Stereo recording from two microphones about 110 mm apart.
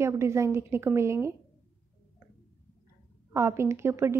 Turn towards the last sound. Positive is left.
turn(degrees=-25)  # may be behind; listen again after turning